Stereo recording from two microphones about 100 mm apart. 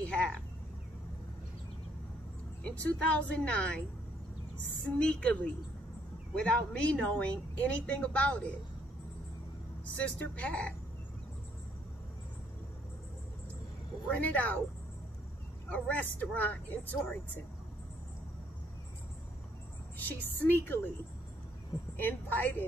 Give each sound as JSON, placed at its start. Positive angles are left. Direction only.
{"t": 0.0, "sound": "a sound", "side_deg": 10}
{"t": 2.6, "sound": "speech", "side_deg": 15}
{"t": 4.8, "sound": "speech", "side_deg": 10}
{"t": 9.9, "sound": "speech", "side_deg": 10}
{"t": 14.2, "sound": "speech", "side_deg": 15}
{"t": 15.7, "sound": "speech", "side_deg": 15}
{"t": 20.0, "sound": "a woman's voice", "side_deg": 20}
{"t": 21.9, "sound": "a woman's voice", "side_deg": 20}